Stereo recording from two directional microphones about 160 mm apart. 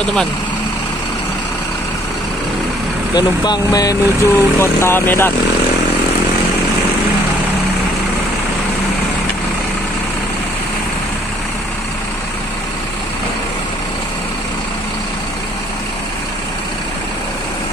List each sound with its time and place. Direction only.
3.2 s speech: 25° left (ahead or behind)